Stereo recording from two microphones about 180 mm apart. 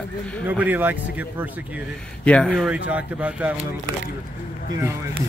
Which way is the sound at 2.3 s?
5° left (ahead or behind).